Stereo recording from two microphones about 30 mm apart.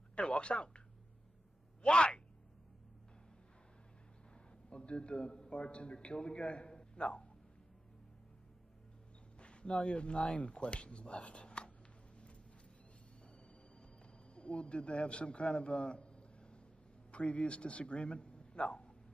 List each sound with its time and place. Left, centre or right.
0.1 s speech: left
4.6 s speech: left
6.7 s a sound: left
9.4 s a sound: left
9.8 s speech: left
14.3 s a man's voice: left